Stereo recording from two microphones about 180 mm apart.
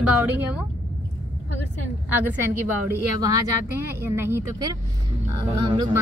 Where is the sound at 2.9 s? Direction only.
20° right (ahead or behind).